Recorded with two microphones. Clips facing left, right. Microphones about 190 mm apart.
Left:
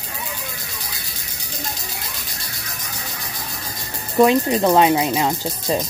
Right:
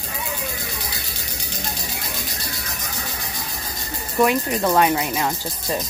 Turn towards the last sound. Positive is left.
turn(degrees=20)  # may be behind; listen again after turning